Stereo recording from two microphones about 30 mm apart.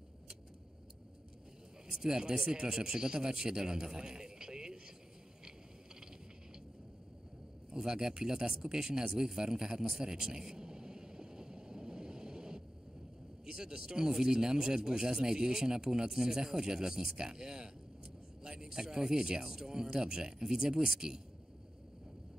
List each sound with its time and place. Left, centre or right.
1.9 s speech: right
2.4 s speech: right
2.7 s a man's voice: right
7.7 s speech: right
8.7 s a sound: right
13.5 s speech: right